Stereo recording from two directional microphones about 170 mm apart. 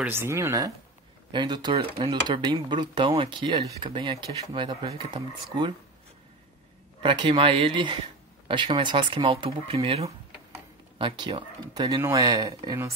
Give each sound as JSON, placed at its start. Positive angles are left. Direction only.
{"t": 0.0, "sound": "speech", "side_deg": -15}
{"t": 7.0, "sound": "speech", "side_deg": -30}